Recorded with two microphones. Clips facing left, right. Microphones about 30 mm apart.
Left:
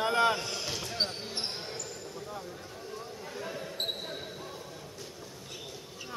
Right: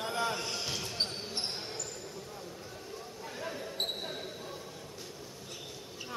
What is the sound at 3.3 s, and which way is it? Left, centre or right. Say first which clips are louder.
Basketball bounce: even; centre.